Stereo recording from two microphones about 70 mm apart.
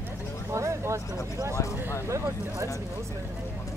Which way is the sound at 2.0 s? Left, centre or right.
Right.